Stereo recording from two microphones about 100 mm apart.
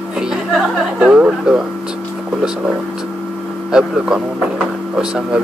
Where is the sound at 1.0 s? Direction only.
10° right (ahead or behind).